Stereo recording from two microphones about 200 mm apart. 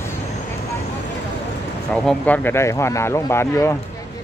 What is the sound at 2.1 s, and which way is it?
Speech, 10° left (ahead or behind).